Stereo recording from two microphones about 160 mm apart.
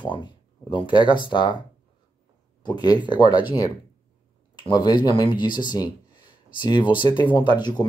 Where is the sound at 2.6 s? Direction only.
25° left (ahead or behind).